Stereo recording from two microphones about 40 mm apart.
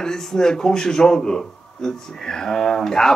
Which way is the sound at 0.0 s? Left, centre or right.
Centre.